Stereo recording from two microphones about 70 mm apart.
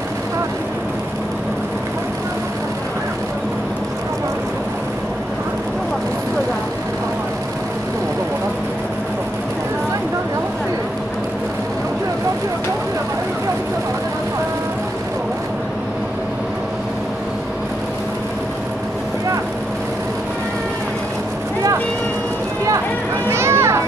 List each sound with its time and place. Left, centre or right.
23.2 s children playing: right